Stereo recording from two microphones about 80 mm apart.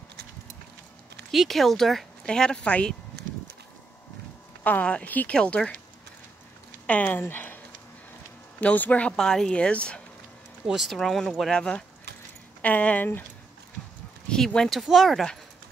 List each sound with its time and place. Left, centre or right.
1.3 s speech: centre
4.6 s speech: centre
6.9 s speech: centre
9.1 s speech: centre
10.7 s speech: centre; by 13.2 s left
14.3 s speech: centre